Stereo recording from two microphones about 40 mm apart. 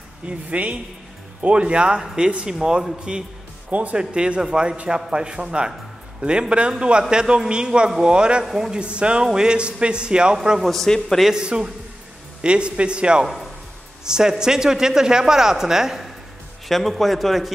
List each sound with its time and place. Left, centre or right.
0.3 s a man's voice: right; by 2.9 s centre
3.9 s a man's voice: right
6.8 s a man's voice: right
10.6 s a man's voice: centre
11.3 s a man's voice: right
13.2 s speech: centre
16.6 s a man's voice: centre